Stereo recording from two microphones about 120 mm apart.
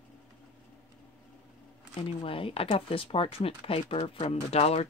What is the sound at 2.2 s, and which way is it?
Speech, 50° left (ahead or behind).